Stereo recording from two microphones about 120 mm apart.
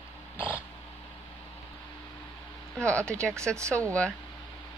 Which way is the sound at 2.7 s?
10° left (ahead or behind).